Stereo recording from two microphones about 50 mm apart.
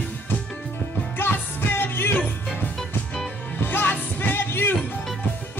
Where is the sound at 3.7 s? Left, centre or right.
Left.